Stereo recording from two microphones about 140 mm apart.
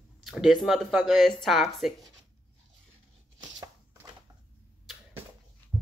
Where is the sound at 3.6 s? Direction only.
20° right (ahead or behind).